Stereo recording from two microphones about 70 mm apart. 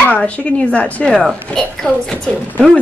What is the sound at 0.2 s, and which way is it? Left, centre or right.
Speech, centre.